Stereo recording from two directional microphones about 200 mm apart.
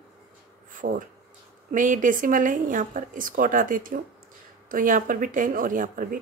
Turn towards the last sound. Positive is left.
turn(degrees=-45)  # may be behind; listen again after turning